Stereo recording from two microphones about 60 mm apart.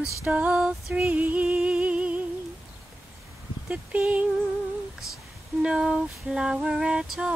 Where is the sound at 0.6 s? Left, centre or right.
Centre.